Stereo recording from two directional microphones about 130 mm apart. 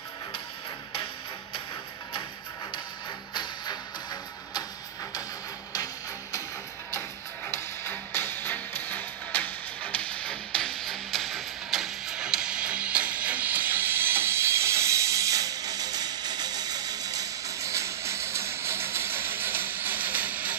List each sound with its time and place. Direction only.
3.3 s music: 30° left (ahead or behind)
7.5 s music: 15° left (ahead or behind); by 20.5 s 10° right (ahead or behind)